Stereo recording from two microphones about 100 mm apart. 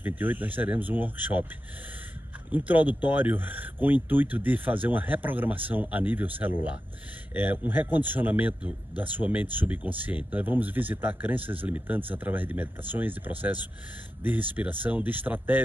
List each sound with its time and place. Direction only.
0.0 s speech: 20° right (ahead or behind)
2.5 s speech: 15° right (ahead or behind)